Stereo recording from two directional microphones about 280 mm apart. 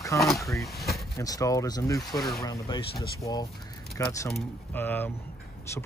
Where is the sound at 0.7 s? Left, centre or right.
Centre.